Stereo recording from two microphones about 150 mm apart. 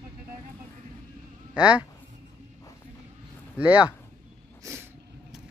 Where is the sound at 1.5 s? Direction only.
5° right (ahead or behind).